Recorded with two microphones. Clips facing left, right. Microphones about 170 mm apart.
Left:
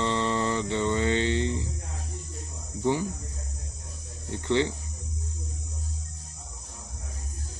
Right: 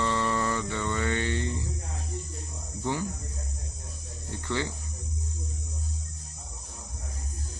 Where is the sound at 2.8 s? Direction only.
15° left (ahead or behind).